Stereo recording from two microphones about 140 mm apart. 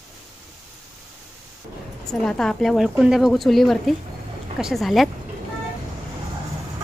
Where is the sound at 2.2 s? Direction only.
5° left (ahead or behind).